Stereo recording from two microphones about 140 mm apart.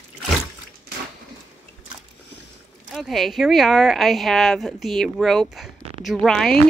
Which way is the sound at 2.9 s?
Centre (ahead or behind).